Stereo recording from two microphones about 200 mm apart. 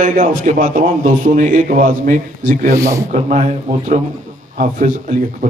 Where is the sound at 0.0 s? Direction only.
40° right (ahead or behind).